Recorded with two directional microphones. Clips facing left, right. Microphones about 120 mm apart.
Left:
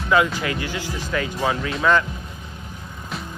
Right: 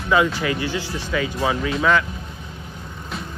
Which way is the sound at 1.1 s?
5° right (ahead or behind).